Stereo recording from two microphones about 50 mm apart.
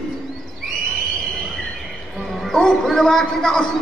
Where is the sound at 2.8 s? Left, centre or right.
Centre.